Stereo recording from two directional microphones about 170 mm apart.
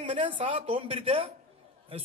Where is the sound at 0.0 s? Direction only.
30° right (ahead or behind).